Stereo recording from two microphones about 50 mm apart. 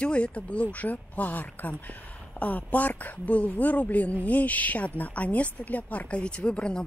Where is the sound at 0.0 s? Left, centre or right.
Left.